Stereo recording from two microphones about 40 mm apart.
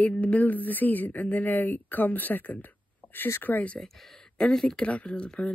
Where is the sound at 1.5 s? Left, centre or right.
Left.